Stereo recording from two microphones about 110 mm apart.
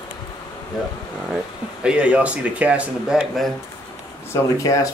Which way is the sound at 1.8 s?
10° right (ahead or behind).